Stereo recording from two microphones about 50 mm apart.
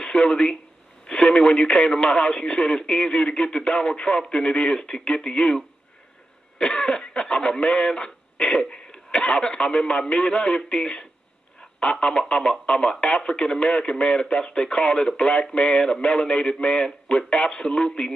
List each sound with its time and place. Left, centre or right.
0.0 s speech: centre
6.6 s speech: centre